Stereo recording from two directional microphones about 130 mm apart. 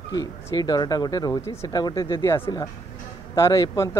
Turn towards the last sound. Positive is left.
turn(degrees=20)  # may be behind; listen again after turning